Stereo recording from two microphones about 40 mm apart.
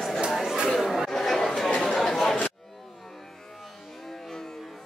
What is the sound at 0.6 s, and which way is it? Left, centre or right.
Chatter, centre.